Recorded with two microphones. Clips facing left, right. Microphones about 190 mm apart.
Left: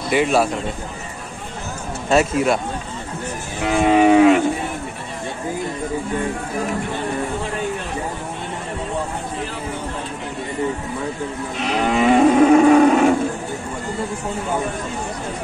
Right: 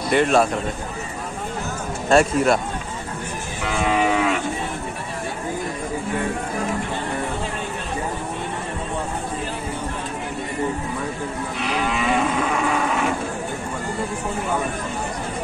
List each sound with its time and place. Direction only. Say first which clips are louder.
0.1 s speech: even; 5° left (ahead or behind)
2.0 s speech: even; centre (ahead or behind)
3.8 s moo: left 7 dB; 35° left (ahead or behind)
11.8 s cattle: left 9 dB; 40° left (ahead or behind)